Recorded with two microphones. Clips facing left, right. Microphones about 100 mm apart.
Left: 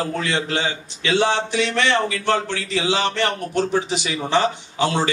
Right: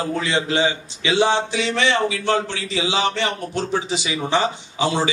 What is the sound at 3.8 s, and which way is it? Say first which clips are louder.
Speech: even; 55° left (ahead or behind).